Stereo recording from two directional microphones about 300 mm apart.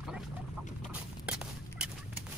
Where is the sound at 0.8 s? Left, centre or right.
Centre.